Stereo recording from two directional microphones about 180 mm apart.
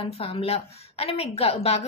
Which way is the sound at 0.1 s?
35° left (ahead or behind).